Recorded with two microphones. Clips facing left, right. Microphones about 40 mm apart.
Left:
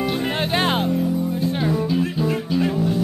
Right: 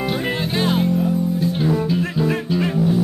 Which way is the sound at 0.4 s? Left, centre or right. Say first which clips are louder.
Left 1 dB; left.